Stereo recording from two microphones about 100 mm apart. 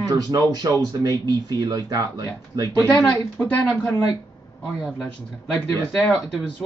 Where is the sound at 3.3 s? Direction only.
20° left (ahead or behind).